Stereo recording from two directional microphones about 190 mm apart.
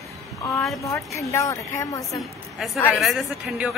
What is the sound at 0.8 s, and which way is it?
A woman's voice, 15° left (ahead or behind).